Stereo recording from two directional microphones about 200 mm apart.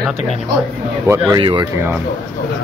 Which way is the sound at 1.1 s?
20° right (ahead or behind).